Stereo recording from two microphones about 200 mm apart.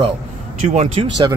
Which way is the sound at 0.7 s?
35° right (ahead or behind).